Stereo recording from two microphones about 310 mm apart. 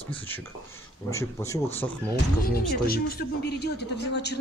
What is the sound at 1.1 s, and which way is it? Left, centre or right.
Speech, centre.